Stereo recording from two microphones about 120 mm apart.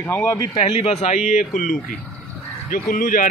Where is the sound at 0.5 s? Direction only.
55° left (ahead or behind); by 1.7 s 90° left.